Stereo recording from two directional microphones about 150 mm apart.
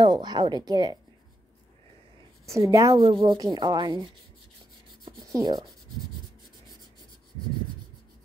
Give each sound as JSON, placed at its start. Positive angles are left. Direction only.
{"t": 0.0, "sound": "rub", "side_deg": -30}
{"t": 2.4, "sound": "rub", "side_deg": -20}
{"t": 3.0, "sound": "rub", "side_deg": -35}
{"t": 5.4, "sound": "rub", "side_deg": -25}